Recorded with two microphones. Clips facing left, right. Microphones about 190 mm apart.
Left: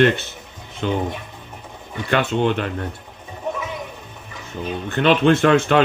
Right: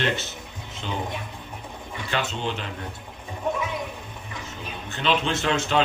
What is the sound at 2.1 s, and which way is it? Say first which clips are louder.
Speech: left 9 dB; 55° left (ahead or behind).